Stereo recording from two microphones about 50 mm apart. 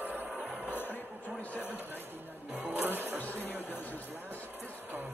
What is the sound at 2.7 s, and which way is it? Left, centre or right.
Music, right.